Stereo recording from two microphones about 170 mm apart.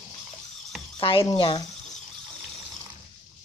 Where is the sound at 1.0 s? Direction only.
35° left (ahead or behind).